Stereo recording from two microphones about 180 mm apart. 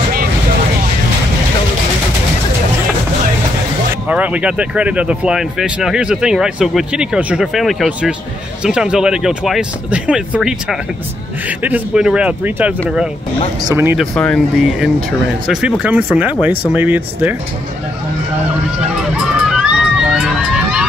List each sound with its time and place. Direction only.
3.9 s speech: 10° right (ahead or behind)
13.9 s speech: 5° left (ahead or behind)
19.5 s run: 5° right (ahead or behind)